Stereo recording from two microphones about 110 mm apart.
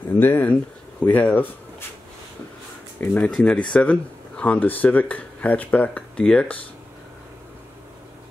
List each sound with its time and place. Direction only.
0.0 s speech: 20° left (ahead or behind)
3.0 s speech: 15° left (ahead or behind)